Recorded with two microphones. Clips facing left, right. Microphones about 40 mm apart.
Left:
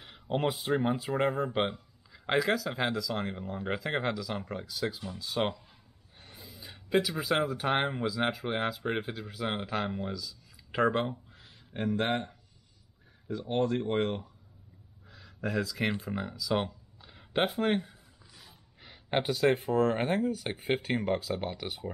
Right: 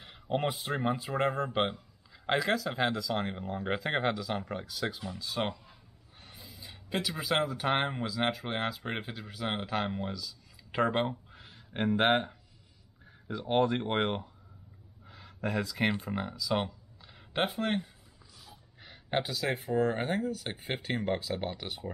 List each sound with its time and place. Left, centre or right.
0.0 s speech: centre
5.2 s speech: centre
11.7 s speech: right
13.6 s speech: right
15.0 s a sound: centre
15.4 s speech: centre